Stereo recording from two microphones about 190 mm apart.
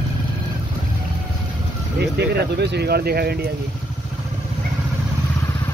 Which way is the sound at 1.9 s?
60° right (ahead or behind).